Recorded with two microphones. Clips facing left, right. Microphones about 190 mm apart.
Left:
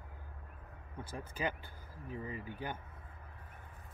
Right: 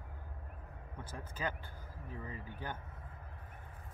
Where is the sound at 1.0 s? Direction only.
10° left (ahead or behind).